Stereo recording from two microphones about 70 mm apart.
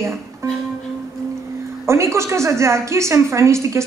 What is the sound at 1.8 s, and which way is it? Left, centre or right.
A woman's voice, right.